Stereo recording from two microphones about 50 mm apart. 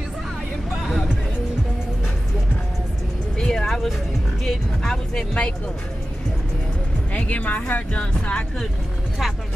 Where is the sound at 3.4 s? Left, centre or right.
Centre.